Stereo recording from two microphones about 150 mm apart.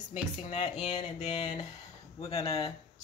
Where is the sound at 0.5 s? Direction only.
45° left (ahead or behind).